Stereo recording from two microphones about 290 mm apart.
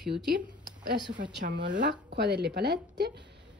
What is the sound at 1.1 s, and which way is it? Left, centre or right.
Speech, right.